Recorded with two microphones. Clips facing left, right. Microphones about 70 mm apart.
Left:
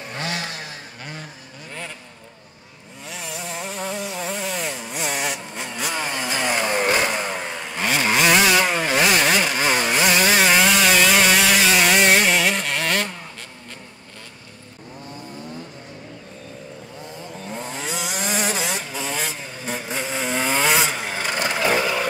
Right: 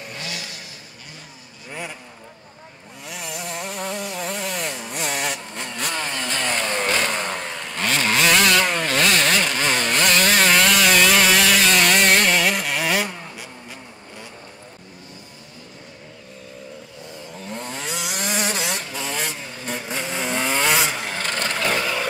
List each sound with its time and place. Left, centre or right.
0.1 s vehicle: left
3.1 s chainsaw: centre
17.3 s vehicle: centre